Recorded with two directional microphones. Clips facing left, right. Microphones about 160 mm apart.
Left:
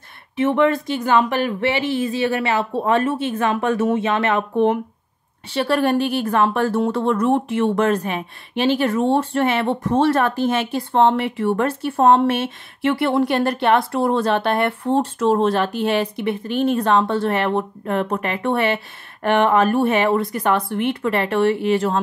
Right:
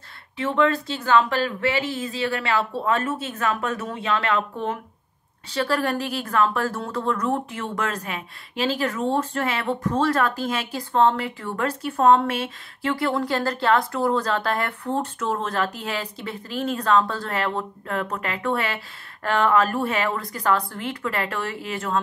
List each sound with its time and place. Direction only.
0.4 s speech: 20° left (ahead or behind)
5.5 s speech: 25° left (ahead or behind)